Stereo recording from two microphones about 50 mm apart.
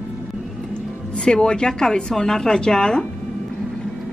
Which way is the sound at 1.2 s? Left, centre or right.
Centre.